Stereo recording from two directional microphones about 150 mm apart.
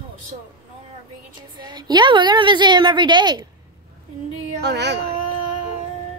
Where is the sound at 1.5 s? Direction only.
30° right (ahead or behind).